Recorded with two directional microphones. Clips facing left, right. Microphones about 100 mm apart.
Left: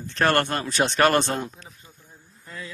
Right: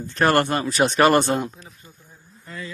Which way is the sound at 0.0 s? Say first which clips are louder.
Right 3 dB; 5° right (ahead or behind).